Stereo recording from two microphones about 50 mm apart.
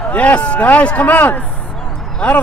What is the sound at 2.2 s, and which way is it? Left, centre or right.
Speech, left.